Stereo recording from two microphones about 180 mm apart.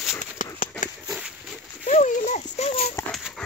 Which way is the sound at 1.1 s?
Centre (ahead or behind).